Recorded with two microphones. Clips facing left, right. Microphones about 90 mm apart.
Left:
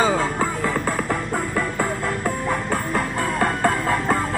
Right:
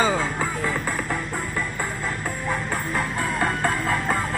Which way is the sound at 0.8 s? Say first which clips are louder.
Left 4 dB; 40° left (ahead or behind).